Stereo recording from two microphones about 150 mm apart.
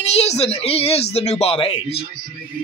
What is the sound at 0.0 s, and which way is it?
Speech, 45° left (ahead or behind).